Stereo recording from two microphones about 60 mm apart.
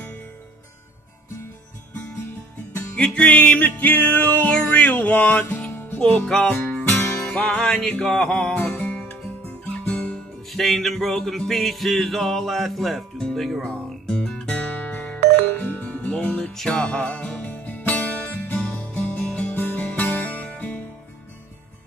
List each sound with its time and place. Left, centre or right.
3.0 s music: left
6.1 s music: centre
6.5 s music: left
7.3 s music: centre
8.7 s music: left
10.5 s music: centre
14.6 s music: left
16.5 s music: centre; by 20.8 s left